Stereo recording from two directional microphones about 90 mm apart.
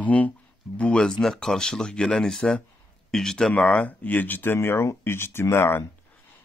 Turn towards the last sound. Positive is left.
turn(degrees=25)  # may be behind; listen again after turning